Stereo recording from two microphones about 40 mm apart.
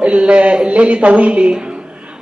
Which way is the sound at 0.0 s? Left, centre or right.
Right.